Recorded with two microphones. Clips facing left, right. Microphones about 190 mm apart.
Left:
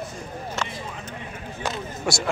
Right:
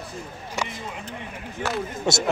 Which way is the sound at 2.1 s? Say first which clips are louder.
Right 2 dB; 25° right (ahead or behind).